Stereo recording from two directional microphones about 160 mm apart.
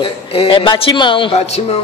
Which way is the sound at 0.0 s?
35° left (ahead or behind).